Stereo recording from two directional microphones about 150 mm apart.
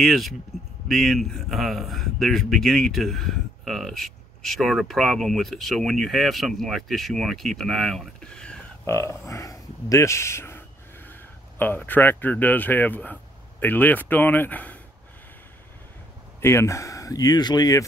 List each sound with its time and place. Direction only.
0.0 s a man's voice: centre (ahead or behind)
8.8 s speech: 15° left (ahead or behind)
16.3 s speech: 20° left (ahead or behind)